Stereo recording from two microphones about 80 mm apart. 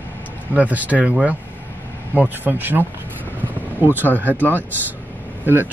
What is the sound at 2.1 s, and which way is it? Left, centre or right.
Speech, right.